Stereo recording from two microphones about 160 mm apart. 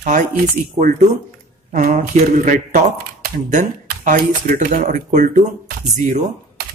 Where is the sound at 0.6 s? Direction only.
45° right (ahead or behind).